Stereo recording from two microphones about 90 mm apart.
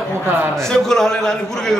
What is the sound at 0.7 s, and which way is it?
A man's voice, 5° left (ahead or behind).